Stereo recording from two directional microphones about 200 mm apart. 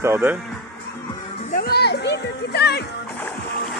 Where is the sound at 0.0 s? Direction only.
10° right (ahead or behind).